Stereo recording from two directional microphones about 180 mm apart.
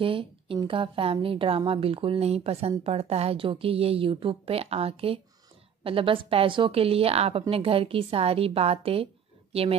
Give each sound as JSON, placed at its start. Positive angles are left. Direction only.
{"t": 0.0, "sound": "a woman's voice", "side_deg": -30}